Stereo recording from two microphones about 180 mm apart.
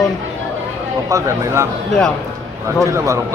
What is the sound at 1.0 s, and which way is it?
Speech, 15° right (ahead or behind).